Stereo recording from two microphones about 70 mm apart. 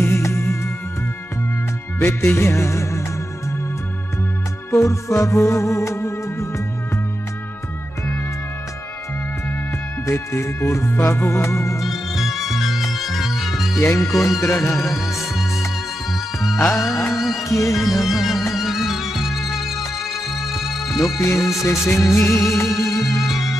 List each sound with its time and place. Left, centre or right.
0.0 s music: left
2.0 s music: left
4.6 s music: left
10.0 s music: left
11.8 s music: centre
13.8 s music: left
14.7 s music: centre
17.4 s music: left
17.7 s music: centre
21.4 s speech: centre
22.0 s music: left
23.2 s music: centre